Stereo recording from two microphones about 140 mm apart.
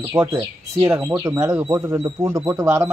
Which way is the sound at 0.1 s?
20° right (ahead or behind).